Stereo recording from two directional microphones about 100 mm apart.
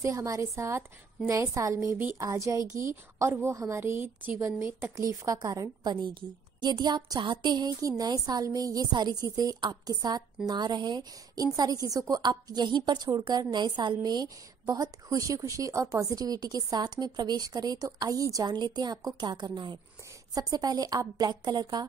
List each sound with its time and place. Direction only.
0.0 s a woman's voice: 35° right (ahead or behind)
4.9 s a woman's voice: 35° right (ahead or behind)
6.6 s a sound: 45° right (ahead or behind)
8.0 s a woman's voice: 40° right (ahead or behind)